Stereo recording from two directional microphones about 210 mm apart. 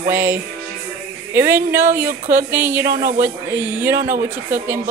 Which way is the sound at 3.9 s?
40° right (ahead or behind).